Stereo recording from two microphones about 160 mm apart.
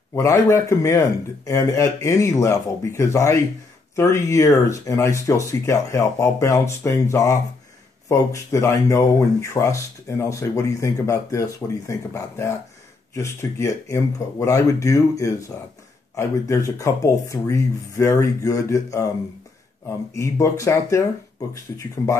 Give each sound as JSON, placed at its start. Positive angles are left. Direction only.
{"t": 0.1, "sound": "speech", "side_deg": 15}
{"t": 20.2, "sound": "speech", "side_deg": 20}